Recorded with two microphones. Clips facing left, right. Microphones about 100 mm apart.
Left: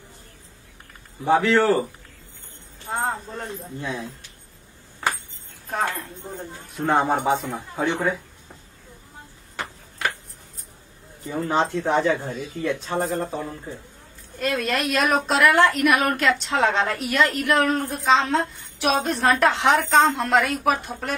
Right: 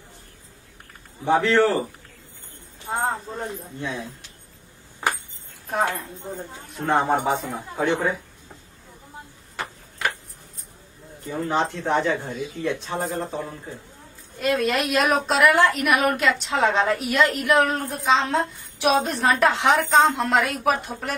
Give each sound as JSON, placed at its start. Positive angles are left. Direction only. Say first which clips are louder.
{"t": 1.2, "sound": "a woman's voice", "louder": "even", "side_deg": 5}
{"t": 3.1, "sound": "a woman's voice", "louder": "right 1 dB", "side_deg": 0}
{"t": 5.0, "sound": "a sound", "louder": "even", "side_deg": -15}
{"t": 5.9, "sound": "a woman's voice", "louder": "right 1 dB", "side_deg": 0}
{"t": 11.2, "sound": "a woman's voice", "louder": "left 1 dB", "side_deg": 0}